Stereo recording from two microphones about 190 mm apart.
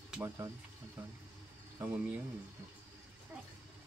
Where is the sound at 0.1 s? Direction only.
10° right (ahead or behind).